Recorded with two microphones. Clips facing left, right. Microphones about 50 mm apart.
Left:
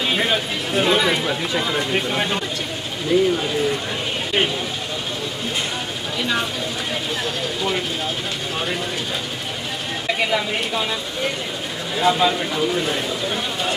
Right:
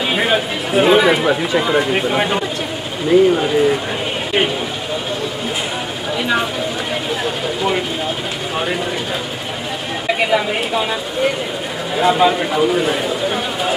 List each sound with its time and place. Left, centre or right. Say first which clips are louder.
0.1 s speech: right 6 dB; centre
7.2 s speech: right 6 dB; centre
10.0 s speech: right 5 dB; centre